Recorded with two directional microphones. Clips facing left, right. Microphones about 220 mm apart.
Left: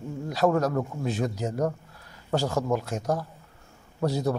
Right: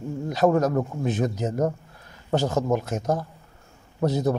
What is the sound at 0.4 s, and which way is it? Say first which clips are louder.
Speech: right 3 dB; 25° right (ahead or behind).